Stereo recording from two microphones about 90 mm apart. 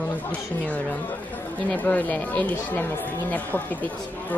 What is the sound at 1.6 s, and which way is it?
Speech, 15° left (ahead or behind).